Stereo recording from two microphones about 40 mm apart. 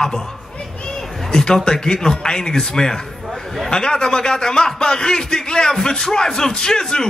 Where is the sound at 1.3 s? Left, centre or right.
Centre.